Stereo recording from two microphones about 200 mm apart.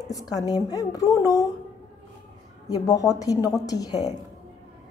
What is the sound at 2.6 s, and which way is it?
A woman's voice, 15° left (ahead or behind).